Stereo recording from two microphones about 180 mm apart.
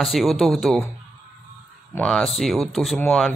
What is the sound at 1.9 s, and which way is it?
Speech, 5° left (ahead or behind).